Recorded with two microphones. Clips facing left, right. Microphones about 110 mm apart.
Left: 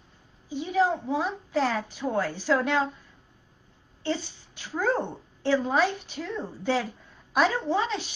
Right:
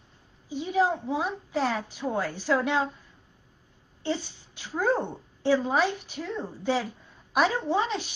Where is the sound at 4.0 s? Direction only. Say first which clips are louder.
Even; 15° right (ahead or behind).